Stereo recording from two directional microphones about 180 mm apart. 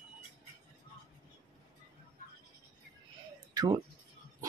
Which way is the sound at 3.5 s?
20° right (ahead or behind).